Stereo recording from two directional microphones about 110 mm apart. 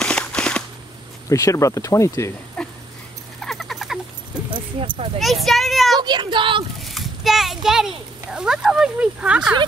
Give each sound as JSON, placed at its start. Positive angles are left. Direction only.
{"t": 0.0, "sound": "cap gun", "side_deg": 10}
{"t": 1.3, "sound": "speech", "side_deg": 30}
{"t": 2.6, "sound": "dog", "side_deg": 5}
{"t": 3.3, "sound": "a sound", "side_deg": 0}
{"t": 4.5, "sound": "a sound", "side_deg": -50}
{"t": 5.2, "sound": "speech", "side_deg": 0}
{"t": 5.9, "sound": "speech", "side_deg": -40}
{"t": 6.8, "sound": "a child's voice", "side_deg": 0}